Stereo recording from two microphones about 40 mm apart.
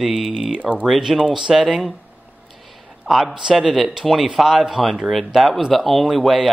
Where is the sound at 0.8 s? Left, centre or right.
Centre.